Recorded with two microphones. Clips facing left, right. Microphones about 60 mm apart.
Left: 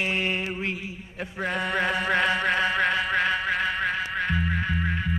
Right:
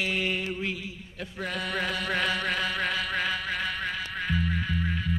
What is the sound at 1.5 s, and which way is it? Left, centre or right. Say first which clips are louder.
Chant: left 5 dB; centre.